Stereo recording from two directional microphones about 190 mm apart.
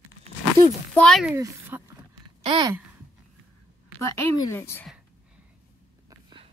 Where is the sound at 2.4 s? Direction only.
25° right (ahead or behind).